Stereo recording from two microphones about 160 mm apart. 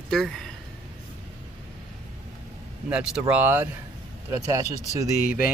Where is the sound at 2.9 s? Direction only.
5° right (ahead or behind).